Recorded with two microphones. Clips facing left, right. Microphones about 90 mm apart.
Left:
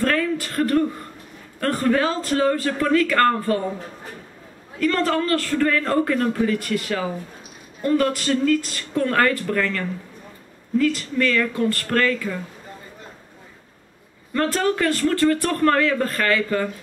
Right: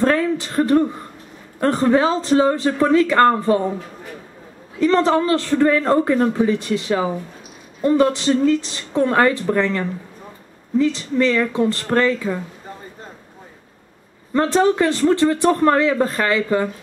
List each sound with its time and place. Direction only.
0.0 s a sound: 20° right (ahead or behind)
1.6 s a man's voice: 20° right (ahead or behind)
4.7 s a man's voice: 20° right (ahead or behind)
14.3 s a man's voice: 20° right (ahead or behind)